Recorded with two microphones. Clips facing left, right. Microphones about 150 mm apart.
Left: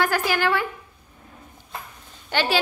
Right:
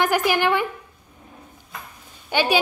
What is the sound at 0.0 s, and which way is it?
Speech, 20° right (ahead or behind).